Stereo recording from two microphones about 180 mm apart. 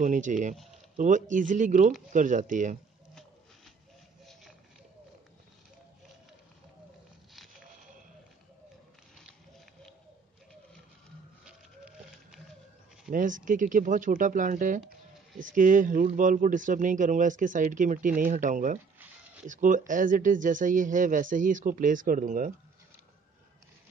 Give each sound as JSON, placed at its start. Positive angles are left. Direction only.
{"t": 0.0, "sound": "speech", "side_deg": -45}
{"t": 11.4, "sound": "a sound", "side_deg": -5}
{"t": 13.1, "sound": "speech", "side_deg": -45}